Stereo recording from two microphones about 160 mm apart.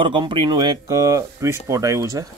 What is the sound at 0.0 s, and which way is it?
Speech, 30° right (ahead or behind).